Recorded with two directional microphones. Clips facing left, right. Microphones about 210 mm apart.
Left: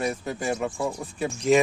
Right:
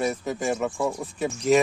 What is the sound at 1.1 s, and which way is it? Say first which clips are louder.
Speech: even; centre (ahead or behind).